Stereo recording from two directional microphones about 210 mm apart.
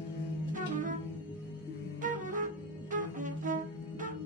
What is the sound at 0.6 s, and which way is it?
Music, 35° right (ahead or behind).